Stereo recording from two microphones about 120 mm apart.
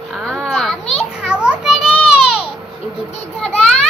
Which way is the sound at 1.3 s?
10° right (ahead or behind).